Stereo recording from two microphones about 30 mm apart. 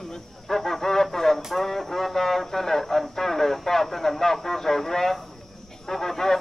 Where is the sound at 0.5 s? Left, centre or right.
Centre.